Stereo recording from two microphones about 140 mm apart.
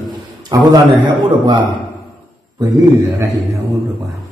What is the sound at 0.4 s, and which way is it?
A man's voice, 30° right (ahead or behind).